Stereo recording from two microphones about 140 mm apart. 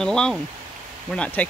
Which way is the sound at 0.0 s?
5° left (ahead or behind).